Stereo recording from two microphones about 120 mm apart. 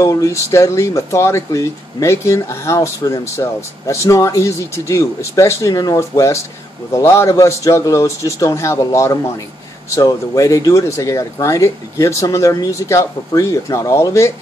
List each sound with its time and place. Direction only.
0.0 s speech: 30° left (ahead or behind)